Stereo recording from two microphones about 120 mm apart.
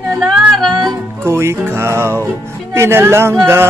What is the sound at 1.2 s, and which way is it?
Speech, 20° right (ahead or behind).